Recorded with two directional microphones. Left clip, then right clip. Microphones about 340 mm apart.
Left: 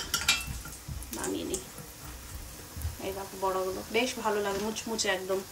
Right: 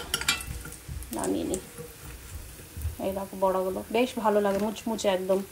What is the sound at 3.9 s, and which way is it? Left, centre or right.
Child singing, centre.